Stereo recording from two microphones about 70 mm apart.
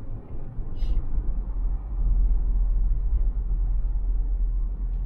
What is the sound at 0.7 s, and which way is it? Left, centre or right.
Vehicle, centre.